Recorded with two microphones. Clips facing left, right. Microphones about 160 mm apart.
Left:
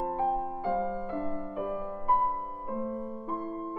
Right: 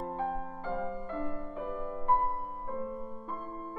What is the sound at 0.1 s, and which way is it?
Music, 15° left (ahead or behind).